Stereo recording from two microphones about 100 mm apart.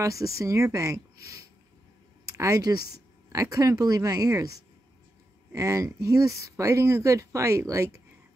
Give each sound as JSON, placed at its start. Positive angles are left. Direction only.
{"t": 0.0, "sound": "speech", "side_deg": -35}